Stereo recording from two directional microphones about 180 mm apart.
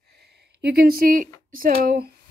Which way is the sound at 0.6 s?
60° right (ahead or behind).